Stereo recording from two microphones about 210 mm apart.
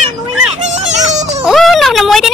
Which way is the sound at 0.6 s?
35° right (ahead or behind).